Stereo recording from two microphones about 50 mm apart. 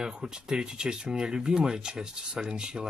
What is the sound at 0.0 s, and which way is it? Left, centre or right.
Speech, centre.